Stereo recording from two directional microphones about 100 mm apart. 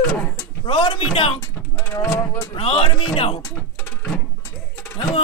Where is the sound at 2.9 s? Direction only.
60° left (ahead or behind).